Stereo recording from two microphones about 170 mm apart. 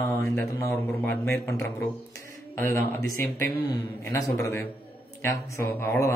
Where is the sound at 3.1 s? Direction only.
20° left (ahead or behind).